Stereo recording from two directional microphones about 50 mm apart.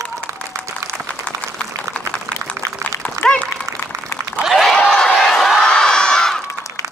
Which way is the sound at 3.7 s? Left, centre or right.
Right.